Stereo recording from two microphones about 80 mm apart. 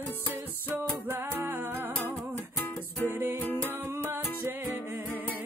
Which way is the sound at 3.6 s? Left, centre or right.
Right.